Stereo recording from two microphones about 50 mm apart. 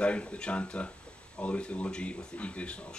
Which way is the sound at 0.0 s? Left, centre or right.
Left.